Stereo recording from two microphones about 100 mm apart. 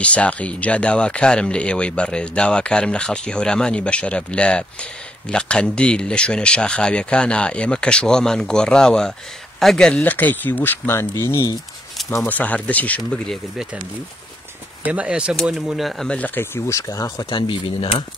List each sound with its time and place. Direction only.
0.0 s speech: 15° left (ahead or behind)
10.1 s speech: 20° left (ahead or behind)
12.3 s speech: 15° left (ahead or behind)
14.9 s speech: 10° right (ahead or behind)
16.1 s speech: 15° left (ahead or behind)
16.5 s speech: 30° left (ahead or behind)
17.3 s speech: 55° left (ahead or behind)